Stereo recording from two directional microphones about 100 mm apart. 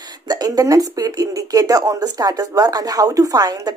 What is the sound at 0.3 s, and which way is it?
Speech, 40° right (ahead or behind).